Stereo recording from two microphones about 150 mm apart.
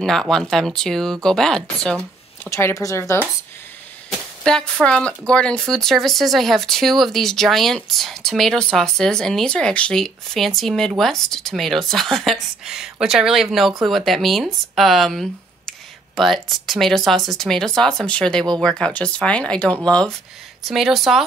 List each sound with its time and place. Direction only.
0.0 s speech: centre (ahead or behind)
2.5 s speech: 20° left (ahead or behind)
4.1 s speech: 5° left (ahead or behind)